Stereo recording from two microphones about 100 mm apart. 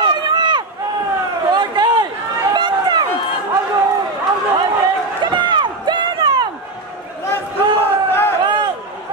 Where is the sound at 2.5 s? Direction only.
50° right (ahead or behind).